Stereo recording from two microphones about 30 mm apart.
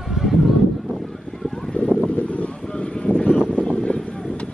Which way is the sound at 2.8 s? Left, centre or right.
Left.